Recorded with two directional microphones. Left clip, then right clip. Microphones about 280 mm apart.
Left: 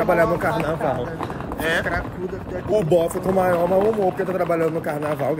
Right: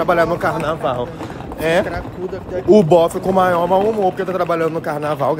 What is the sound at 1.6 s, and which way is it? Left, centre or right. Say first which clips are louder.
Speech: right 5 dB; centre.